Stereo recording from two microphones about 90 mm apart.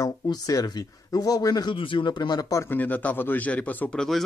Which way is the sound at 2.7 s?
20° left (ahead or behind).